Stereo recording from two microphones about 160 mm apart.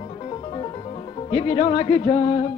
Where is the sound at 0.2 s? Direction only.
30° left (ahead or behind).